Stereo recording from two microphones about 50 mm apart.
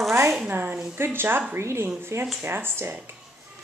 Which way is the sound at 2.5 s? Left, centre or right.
Right.